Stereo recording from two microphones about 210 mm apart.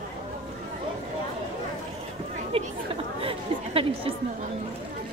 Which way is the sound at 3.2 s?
25° right (ahead or behind).